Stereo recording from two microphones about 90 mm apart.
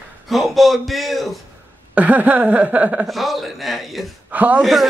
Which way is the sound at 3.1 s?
Centre (ahead or behind).